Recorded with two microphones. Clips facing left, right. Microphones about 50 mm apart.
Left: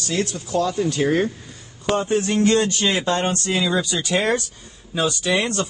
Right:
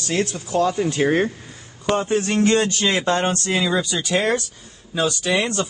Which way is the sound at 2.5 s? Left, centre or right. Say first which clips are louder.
Even; right.